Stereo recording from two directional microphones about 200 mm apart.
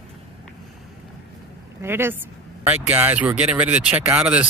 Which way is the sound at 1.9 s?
10° right (ahead or behind).